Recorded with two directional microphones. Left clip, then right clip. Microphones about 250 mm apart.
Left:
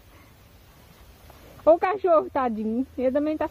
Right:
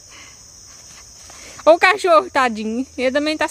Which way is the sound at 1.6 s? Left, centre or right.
Centre.